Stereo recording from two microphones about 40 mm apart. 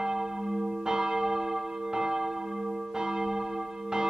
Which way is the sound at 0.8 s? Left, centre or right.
Centre.